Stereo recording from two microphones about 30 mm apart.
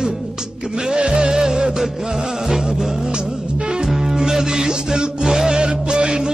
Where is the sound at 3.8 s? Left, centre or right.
Centre.